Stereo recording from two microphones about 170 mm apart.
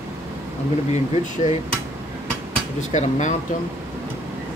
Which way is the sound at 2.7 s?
45° left (ahead or behind).